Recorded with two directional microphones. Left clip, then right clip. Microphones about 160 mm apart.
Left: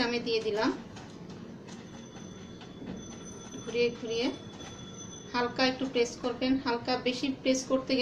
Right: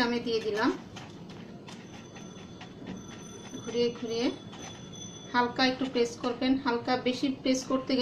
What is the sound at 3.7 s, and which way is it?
Speech, 40° right (ahead or behind).